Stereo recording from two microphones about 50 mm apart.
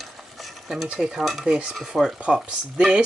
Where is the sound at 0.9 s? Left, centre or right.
Centre.